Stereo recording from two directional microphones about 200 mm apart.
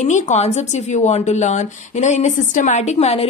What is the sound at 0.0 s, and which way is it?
Speech, 35° left (ahead or behind).